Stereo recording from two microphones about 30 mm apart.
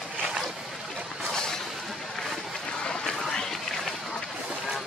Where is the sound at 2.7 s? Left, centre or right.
Left.